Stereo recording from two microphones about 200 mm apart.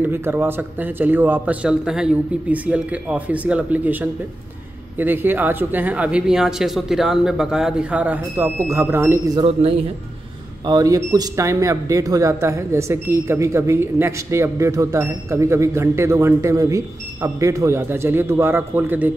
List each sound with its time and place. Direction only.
0.0 s speech: 10° right (ahead or behind)
9.4 s speech: 30° right (ahead or behind)
10.6 s speech: 20° right (ahead or behind)